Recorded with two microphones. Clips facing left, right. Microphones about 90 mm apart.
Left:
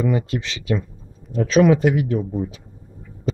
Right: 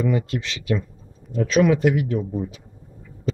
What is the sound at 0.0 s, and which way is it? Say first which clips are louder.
Speech: left 1 dB; 15° left (ahead or behind).